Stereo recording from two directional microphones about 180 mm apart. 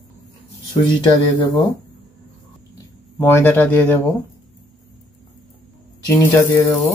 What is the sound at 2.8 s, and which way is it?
Speech, 15° left (ahead or behind).